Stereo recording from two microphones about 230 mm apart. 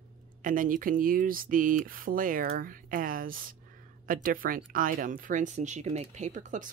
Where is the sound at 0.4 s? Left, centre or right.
Right.